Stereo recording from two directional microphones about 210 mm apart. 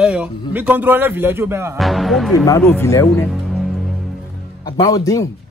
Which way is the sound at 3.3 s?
Centre (ahead or behind).